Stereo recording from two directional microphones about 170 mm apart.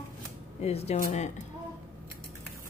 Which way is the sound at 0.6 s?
40° left (ahead or behind).